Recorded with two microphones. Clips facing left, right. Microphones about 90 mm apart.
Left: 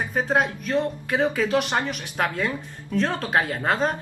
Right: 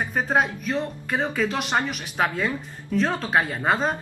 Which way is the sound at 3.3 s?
5° right (ahead or behind).